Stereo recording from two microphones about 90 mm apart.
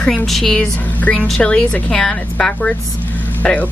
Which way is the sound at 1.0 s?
20° left (ahead or behind).